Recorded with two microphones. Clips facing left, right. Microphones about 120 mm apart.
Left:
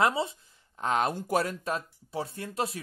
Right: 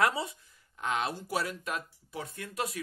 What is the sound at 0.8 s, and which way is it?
Speech, 40° left (ahead or behind).